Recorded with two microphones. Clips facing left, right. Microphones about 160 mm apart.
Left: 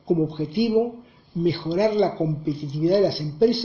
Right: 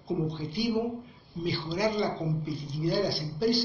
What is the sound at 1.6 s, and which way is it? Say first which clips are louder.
Speech: left 7 dB; 60° left (ahead or behind).